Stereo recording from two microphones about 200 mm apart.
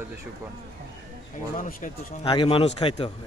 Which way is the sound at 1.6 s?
45° left (ahead or behind).